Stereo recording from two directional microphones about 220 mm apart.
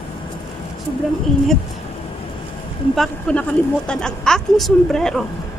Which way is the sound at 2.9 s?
5° left (ahead or behind).